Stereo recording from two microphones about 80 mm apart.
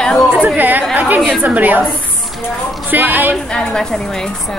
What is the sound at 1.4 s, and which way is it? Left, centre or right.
Speech, right.